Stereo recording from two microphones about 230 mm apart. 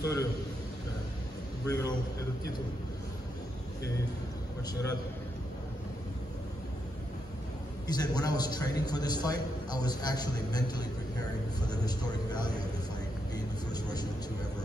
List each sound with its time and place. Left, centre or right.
0.0 s a man's voice: centre
1.7 s a man's voice: centre
7.8 s a man's voice: centre